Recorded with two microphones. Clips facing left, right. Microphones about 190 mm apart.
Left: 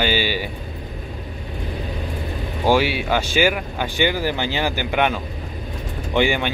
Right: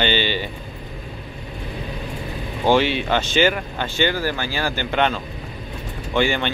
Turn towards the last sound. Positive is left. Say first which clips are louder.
# left 1 dB
turn(degrees=15)  # may be behind; listen again after turning